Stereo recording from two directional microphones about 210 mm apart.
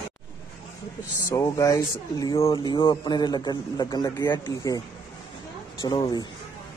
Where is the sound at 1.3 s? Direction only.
15° left (ahead or behind).